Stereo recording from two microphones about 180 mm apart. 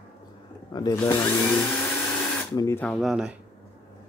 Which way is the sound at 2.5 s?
15° left (ahead or behind).